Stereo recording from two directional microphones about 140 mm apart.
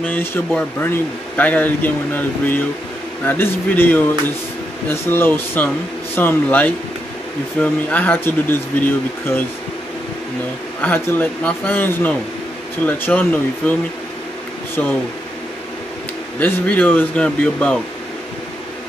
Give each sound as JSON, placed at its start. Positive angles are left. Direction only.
{"t": 0.0, "sound": "speech", "side_deg": 15}
{"t": 10.8, "sound": "speech", "side_deg": 15}
{"t": 16.3, "sound": "speech", "side_deg": 10}